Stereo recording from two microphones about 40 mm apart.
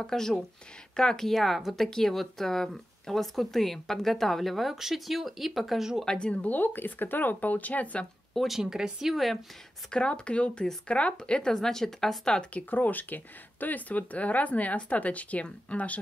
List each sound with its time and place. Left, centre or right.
0.0 s speech: centre
1.3 s speech: centre
6.0 s speech: left
6.4 s speech: left
8.5 s speech: centre
9.1 s speech: centre
9.8 s speech: left
12.6 s speech: left